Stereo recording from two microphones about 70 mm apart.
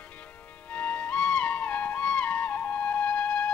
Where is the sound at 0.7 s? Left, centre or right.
Centre.